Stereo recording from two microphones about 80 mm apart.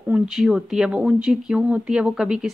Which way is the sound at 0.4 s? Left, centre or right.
Centre.